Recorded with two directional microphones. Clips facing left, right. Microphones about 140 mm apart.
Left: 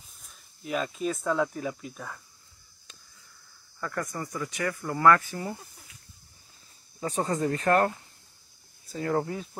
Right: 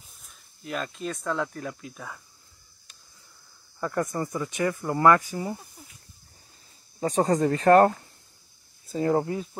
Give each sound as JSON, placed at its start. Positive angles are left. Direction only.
{"t": 0.2, "sound": "speech", "side_deg": 0}
{"t": 3.8, "sound": "speech", "side_deg": -25}
{"t": 7.0, "sound": "speech", "side_deg": -35}
{"t": 8.8, "sound": "speech", "side_deg": -25}
{"t": 9.3, "sound": "speech", "side_deg": 0}